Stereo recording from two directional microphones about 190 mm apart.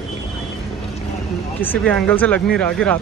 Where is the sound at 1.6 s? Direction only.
10° left (ahead or behind).